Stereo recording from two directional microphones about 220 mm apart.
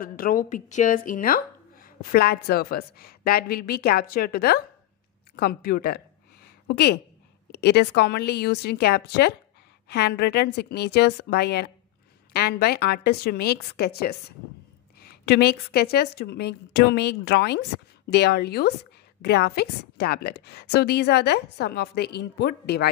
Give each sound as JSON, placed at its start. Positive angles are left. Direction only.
{"t": 0.0, "sound": "a woman's voice", "side_deg": 40}
{"t": 5.3, "sound": "a sound", "side_deg": 45}
{"t": 7.5, "sound": "a woman's voice", "side_deg": 50}